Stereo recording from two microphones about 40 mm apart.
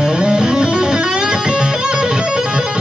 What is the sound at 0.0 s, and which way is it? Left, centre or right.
Music, centre.